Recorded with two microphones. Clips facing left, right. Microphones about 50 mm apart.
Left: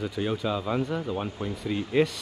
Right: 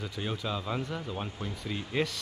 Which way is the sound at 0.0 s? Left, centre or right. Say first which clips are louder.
Left 7 dB; centre.